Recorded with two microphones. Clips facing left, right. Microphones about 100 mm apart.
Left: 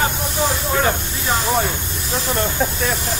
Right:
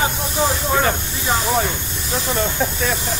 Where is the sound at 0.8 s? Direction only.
Centre (ahead or behind).